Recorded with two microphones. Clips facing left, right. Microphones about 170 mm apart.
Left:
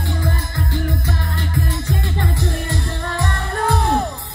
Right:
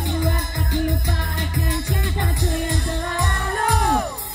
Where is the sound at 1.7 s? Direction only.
15° right (ahead or behind).